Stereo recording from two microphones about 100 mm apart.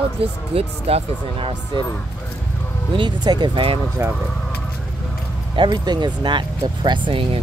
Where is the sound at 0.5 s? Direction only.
80° right.